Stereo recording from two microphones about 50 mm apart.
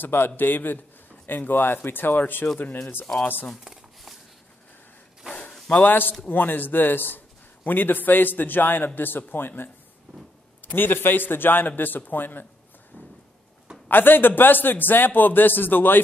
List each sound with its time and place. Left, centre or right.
0.0 s speech: left
3.6 s a sound: centre
5.7 s a man's voice: left
13.8 s a man's voice: left